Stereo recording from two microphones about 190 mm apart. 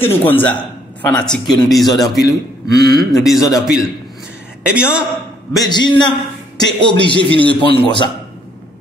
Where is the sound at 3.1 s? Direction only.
Centre (ahead or behind).